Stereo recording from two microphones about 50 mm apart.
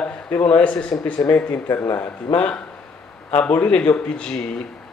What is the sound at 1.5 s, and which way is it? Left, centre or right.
Speech, left.